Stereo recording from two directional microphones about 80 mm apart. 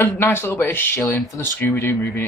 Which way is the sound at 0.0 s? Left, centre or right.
Left.